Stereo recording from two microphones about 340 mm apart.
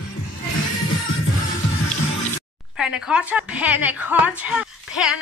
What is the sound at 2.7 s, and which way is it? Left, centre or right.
A woman's voice, centre.